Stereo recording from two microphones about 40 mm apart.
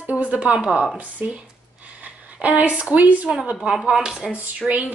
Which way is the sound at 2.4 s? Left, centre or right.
Right.